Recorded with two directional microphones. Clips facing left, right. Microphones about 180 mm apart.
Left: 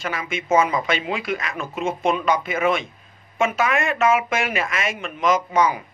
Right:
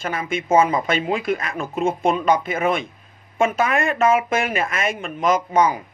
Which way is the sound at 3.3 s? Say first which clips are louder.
Right 2 dB; 35° right (ahead or behind).